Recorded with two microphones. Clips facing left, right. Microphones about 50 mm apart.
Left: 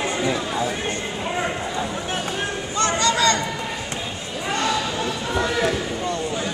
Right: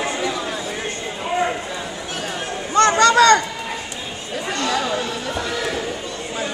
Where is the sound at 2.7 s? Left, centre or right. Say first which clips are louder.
Right 8 dB; right.